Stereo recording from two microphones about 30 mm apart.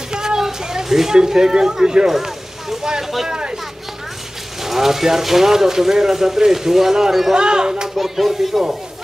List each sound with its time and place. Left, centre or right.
0.1 s a sound: right
1.1 s speech: centre
2.1 s vehicle: centre
2.8 s speech: right
4.6 s speech: centre
7.3 s speech: right
8.0 s a sound: centre